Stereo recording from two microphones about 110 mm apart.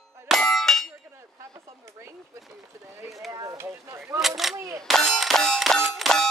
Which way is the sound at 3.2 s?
25° right (ahead or behind).